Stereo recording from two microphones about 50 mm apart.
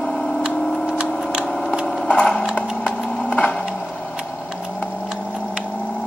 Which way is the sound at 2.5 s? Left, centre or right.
Left.